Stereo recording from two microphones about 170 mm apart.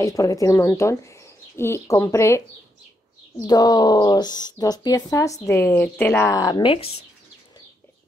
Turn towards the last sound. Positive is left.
turn(degrees=30)  # may be behind; listen again after turning